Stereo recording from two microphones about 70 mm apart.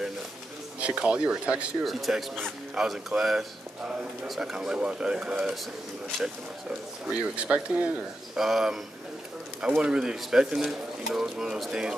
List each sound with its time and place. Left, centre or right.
0.7 s speech: centre
1.9 s speech: centre
7.1 s speech: centre
8.4 s speech: centre